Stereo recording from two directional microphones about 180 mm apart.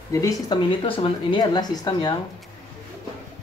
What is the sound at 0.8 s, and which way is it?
Speech, 30° left (ahead or behind).